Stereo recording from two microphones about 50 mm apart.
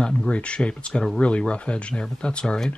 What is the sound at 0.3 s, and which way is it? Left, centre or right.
Speech, left.